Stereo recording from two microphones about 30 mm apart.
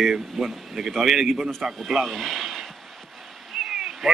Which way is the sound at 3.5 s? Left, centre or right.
Centre.